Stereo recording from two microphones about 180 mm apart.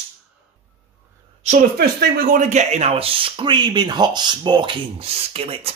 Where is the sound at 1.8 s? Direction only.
60° right (ahead or behind); by 5.7 s 30° right (ahead or behind).